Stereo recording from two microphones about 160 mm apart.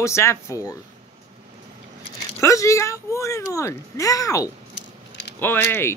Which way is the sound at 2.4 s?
20° left (ahead or behind).